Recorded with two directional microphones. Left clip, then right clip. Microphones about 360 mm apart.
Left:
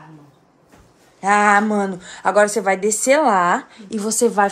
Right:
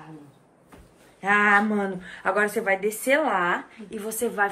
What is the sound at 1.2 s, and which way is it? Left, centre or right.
A woman's voice, centre.